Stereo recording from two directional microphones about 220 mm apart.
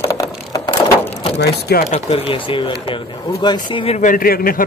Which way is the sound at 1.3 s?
45° left (ahead or behind).